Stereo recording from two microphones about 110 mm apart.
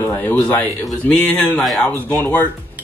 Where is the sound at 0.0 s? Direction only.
20° left (ahead or behind).